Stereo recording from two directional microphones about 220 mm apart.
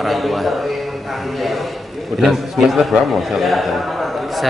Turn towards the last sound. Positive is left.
turn(degrees=0)  # may be behind; listen again after turning